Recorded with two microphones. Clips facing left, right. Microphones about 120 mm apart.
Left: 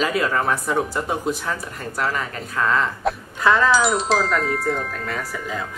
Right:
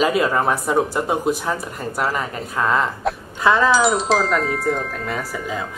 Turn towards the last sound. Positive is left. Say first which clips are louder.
# right 2 dB
turn(degrees=-5)  # may be behind; listen again after turning